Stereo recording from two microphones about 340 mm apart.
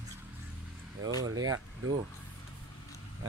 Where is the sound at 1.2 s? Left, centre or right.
Centre.